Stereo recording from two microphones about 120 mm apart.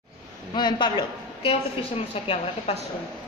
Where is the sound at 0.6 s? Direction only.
40° left (ahead or behind); by 2.8 s 55° left (ahead or behind).